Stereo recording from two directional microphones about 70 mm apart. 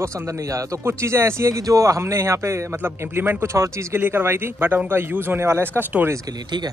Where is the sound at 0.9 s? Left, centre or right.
Right.